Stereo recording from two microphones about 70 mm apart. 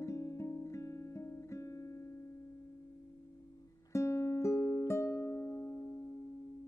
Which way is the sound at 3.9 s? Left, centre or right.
Left.